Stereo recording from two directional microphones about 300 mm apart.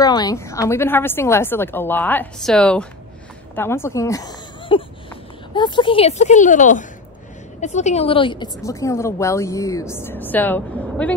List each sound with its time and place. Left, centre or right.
0.0 s speech: centre